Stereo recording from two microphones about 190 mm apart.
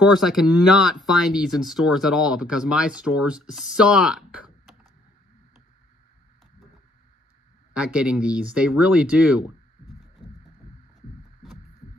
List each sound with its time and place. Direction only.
0.0 s speech: centre (ahead or behind)
7.7 s speech: 5° right (ahead or behind)
10.2 s throbbing: 20° left (ahead or behind)